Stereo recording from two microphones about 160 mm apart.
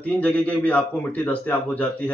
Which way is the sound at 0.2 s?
10° left (ahead or behind).